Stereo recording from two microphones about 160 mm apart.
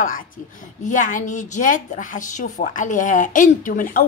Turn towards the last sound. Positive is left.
turn(degrees=60)  # may be behind; listen again after turning